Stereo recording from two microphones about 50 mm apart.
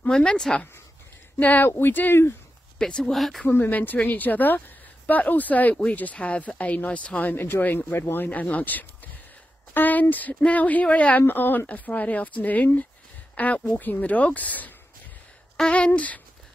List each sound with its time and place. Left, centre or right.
0.1 s speech: centre
1.4 s a woman's voice: left
1.7 s speech: left
2.8 s speech: centre
3.2 s speech: centre
3.4 s a woman's voice: left
7.2 s a woman's voice: left
11.2 s speech: left
11.6 s a woman's voice: left
15.5 s speech: centre